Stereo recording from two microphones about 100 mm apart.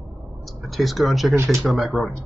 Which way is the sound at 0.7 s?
Centre (ahead or behind).